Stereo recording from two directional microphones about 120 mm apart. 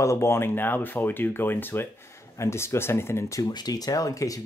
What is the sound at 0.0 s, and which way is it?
Speech, 25° left (ahead or behind).